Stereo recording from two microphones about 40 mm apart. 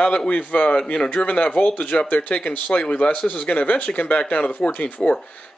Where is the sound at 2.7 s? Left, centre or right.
Left.